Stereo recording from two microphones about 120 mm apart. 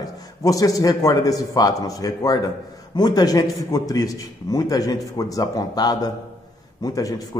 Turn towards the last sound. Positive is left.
turn(degrees=30)  # may be behind; listen again after turning